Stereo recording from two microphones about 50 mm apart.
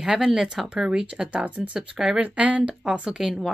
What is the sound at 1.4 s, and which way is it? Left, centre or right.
Speech, right.